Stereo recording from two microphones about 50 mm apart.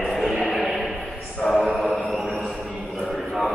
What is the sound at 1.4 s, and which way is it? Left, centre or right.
Mantra, centre.